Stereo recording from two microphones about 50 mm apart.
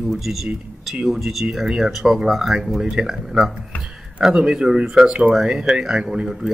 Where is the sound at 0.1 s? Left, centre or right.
Centre.